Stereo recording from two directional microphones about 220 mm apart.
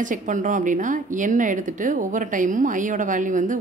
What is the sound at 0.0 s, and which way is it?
A woman's voice, 35° right (ahead or behind).